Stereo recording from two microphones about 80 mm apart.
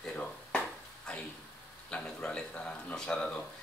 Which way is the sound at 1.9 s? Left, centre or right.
Centre.